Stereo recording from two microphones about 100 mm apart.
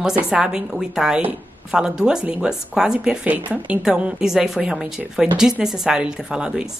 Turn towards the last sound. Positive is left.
turn(degrees=-10)  # may be behind; listen again after turning